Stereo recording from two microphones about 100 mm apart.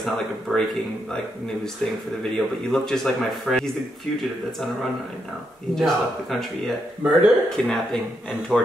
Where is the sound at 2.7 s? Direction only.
5° left (ahead or behind).